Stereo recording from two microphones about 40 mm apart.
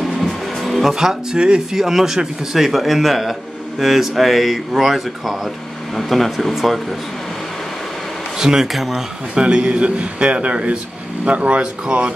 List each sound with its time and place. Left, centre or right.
0.0 s music: centre
0.9 s speech: centre
1.7 s speech: centre
8.4 s speech: centre
8.7 s speech: centre
9.3 s speech: right